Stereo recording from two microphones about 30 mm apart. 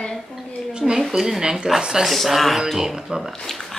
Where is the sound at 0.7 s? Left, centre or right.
Right.